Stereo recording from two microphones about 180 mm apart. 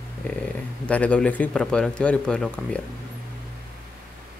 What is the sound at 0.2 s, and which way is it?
Speech, 10° left (ahead or behind).